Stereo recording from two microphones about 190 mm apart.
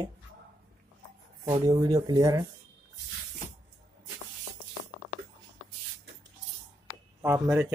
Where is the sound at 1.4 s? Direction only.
20° right (ahead or behind).